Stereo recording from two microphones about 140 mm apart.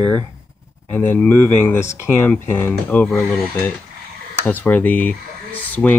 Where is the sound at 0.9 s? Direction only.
10° left (ahead or behind).